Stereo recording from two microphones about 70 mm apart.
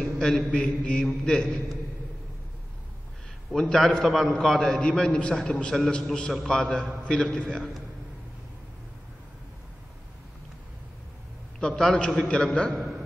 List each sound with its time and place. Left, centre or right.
0.0 s mantra: centre
0.5 s a man's voice: centre
3.5 s a man's voice: centre
11.6 s a man's voice: centre